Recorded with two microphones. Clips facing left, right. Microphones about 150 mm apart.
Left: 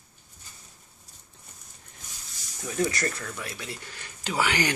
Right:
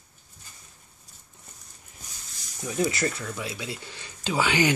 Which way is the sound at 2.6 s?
10° right (ahead or behind).